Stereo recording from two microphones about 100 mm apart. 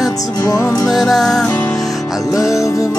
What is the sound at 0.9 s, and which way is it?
Music, centre (ahead or behind).